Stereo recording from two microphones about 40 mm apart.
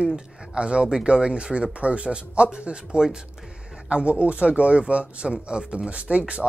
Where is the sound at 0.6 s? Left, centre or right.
Right.